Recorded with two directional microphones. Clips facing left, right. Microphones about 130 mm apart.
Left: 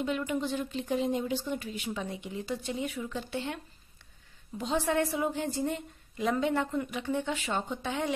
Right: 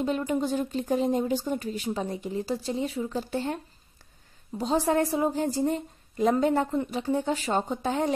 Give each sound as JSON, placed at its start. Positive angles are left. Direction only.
{"t": 0.0, "sound": "speech", "side_deg": -35}